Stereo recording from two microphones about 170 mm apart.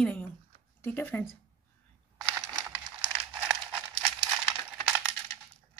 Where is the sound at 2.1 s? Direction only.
20° right (ahead or behind).